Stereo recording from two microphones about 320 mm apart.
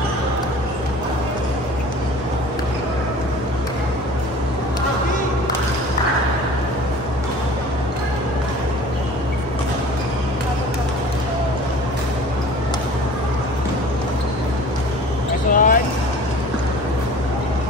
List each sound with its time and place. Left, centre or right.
15.5 s vehicle: left